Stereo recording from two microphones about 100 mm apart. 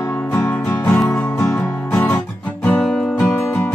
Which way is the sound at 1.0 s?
15° left (ahead or behind).